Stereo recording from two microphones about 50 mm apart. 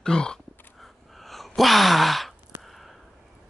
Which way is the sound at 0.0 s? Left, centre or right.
Centre.